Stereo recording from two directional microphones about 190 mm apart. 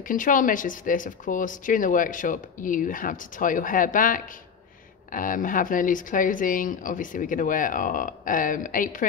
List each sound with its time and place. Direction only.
0.1 s speech: 45° left (ahead or behind)